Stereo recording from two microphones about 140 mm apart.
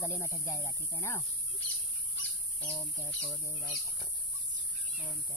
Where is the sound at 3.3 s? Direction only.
25° left (ahead or behind).